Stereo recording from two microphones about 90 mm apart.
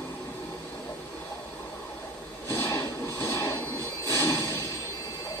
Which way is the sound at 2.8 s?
35° left (ahead or behind).